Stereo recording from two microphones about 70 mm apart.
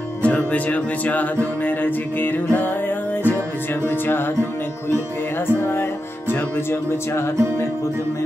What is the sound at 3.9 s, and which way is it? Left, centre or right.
Music, left.